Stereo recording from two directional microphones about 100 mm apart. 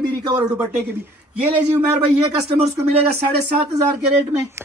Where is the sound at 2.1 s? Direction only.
90° right.